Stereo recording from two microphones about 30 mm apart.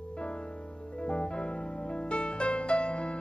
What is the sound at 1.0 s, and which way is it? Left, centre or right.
Music, left.